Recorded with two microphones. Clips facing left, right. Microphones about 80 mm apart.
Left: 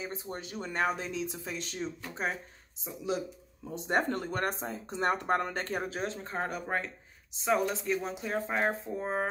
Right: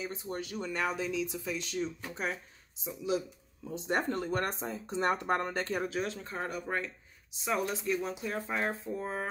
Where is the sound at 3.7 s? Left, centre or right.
Left.